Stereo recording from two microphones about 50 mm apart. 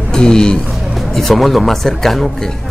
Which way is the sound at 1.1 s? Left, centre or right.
Centre.